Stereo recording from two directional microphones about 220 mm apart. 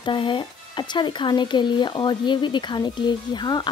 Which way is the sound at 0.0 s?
20° left (ahead or behind).